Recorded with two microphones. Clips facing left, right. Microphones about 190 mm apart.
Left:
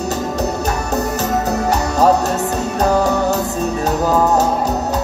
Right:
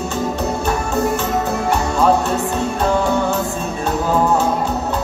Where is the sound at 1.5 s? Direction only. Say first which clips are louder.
Left 1 dB; 40° left (ahead or behind).